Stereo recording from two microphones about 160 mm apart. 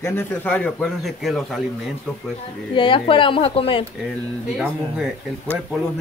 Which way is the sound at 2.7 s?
30° left (ahead or behind).